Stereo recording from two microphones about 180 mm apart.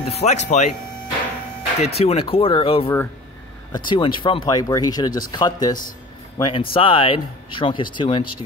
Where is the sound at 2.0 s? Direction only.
35° left (ahead or behind).